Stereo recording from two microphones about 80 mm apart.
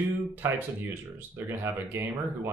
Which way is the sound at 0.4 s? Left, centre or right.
Right.